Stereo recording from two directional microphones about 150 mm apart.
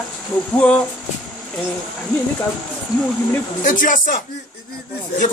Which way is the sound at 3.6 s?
60° left (ahead or behind).